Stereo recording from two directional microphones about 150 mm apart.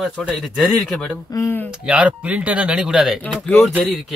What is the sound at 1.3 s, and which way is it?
Speech, 15° left (ahead or behind).